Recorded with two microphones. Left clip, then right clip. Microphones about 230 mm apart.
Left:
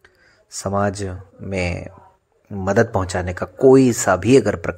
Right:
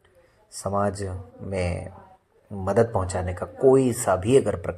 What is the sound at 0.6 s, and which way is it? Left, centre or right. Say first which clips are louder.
Speech: left 4 dB; left.